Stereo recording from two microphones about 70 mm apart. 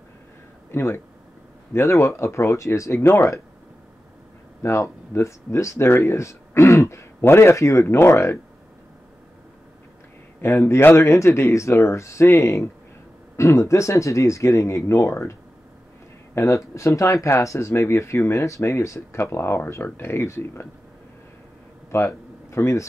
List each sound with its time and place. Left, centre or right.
0.7 s speech: left
4.6 s speech: left
10.4 s speech: left
16.3 s speech: left
21.9 s speech: left